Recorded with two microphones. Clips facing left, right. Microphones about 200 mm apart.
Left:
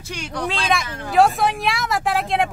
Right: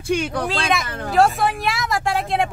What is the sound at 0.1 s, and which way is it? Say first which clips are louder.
Speech: right 7 dB; 55° right (ahead or behind).